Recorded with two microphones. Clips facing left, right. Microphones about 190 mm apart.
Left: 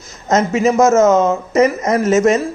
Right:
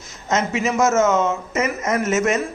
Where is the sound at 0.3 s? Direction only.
40° left (ahead or behind).